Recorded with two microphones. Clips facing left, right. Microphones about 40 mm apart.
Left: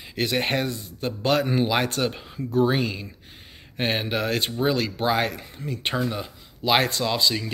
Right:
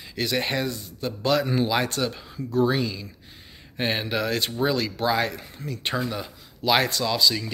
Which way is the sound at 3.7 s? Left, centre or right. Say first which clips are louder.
Left 1 dB; centre.